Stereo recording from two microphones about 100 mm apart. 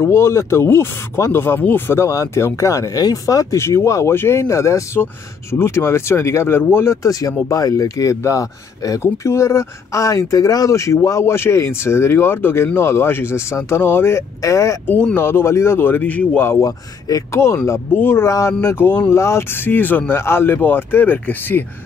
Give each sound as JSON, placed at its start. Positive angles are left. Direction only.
{"t": 0.0, "sound": "speech", "side_deg": 25}
{"t": 14.9, "sound": "speech", "side_deg": 15}